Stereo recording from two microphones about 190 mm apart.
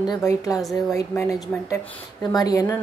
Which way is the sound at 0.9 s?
15° left (ahead or behind).